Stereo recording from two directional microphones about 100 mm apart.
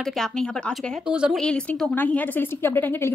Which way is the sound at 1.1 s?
10° right (ahead or behind).